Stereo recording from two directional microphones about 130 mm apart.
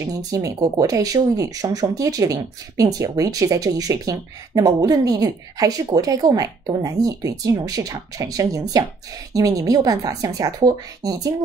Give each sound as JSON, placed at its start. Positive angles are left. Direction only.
{"t": 0.0, "sound": "speech", "side_deg": -25}